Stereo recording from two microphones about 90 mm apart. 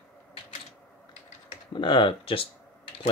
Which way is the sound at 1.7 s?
60° left (ahead or behind).